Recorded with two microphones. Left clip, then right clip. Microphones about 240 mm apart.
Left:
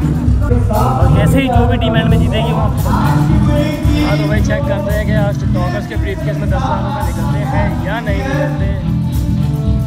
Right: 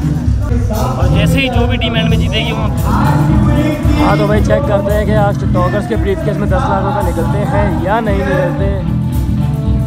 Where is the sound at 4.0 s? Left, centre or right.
Right.